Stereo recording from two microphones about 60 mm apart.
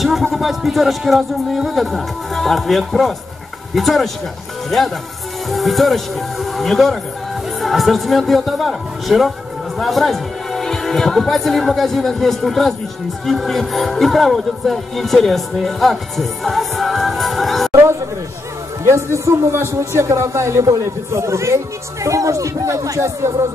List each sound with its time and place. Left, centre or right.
0.0 s speech: centre
18.9 s a man's voice: right
22.0 s speech: right